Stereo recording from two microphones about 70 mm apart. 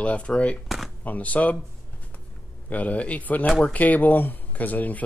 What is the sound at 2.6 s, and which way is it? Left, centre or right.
Speech, left.